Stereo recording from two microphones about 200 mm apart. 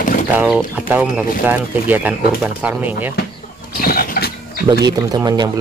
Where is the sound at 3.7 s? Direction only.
45° left (ahead or behind).